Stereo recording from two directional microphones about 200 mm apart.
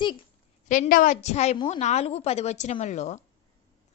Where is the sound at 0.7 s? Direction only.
40° left (ahead or behind).